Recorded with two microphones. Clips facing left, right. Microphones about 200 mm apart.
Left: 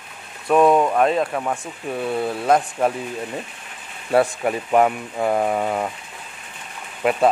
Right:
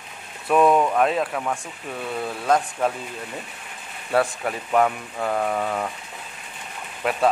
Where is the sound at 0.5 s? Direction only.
10° left (ahead or behind).